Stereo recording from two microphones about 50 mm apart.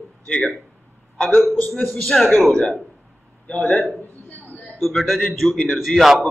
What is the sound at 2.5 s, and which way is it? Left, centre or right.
Speech, centre.